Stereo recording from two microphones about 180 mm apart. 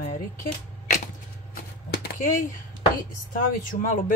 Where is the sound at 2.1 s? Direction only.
45° left (ahead or behind).